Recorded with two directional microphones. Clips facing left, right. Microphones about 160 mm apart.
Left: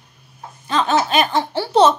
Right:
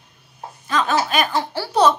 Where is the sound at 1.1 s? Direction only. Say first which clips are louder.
Left 3 dB; 25° left (ahead or behind).